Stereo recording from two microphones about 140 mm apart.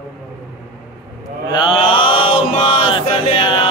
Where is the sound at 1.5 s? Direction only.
40° left (ahead or behind).